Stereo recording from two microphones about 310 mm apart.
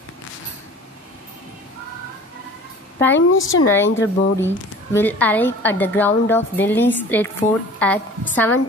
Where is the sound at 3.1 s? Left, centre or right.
Left.